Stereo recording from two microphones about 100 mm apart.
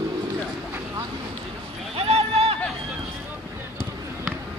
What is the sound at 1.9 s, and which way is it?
Clip-clop, 80° right.